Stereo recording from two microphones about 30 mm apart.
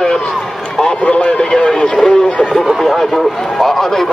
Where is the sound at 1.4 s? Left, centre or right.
Left.